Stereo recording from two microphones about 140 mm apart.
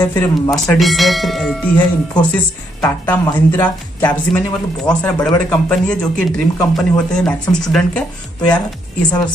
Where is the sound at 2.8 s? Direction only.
15° left (ahead or behind).